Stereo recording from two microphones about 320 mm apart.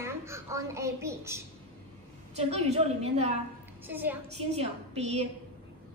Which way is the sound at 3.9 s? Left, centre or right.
Centre.